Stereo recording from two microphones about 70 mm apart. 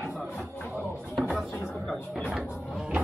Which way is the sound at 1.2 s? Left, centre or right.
Centre.